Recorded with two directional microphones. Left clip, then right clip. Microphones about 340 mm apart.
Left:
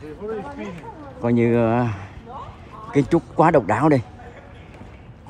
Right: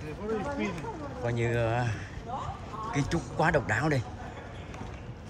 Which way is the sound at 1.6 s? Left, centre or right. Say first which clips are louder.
Left 10 dB; centre.